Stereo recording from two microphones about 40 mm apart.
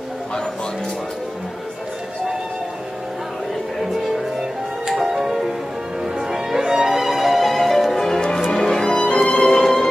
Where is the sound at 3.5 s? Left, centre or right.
Centre.